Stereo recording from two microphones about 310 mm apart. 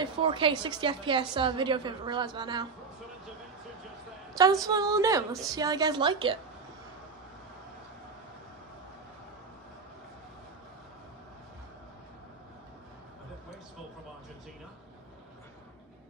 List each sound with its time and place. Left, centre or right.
0.0 s a woman's voice: centre
4.4 s a woman's voice: centre